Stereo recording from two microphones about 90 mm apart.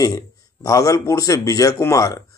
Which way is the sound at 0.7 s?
35° left (ahead or behind).